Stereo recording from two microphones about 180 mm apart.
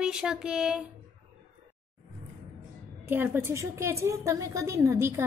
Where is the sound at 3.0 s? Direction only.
10° right (ahead or behind).